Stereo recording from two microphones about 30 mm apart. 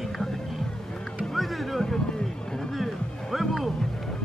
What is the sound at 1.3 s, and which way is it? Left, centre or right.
Music, centre.